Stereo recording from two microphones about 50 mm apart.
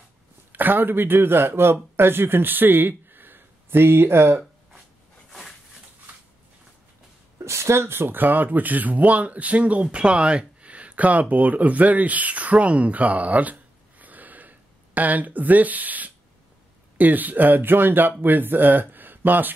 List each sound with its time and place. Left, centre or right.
0.5 s speech: right
7.4 s a sound: right
7.8 s speech: right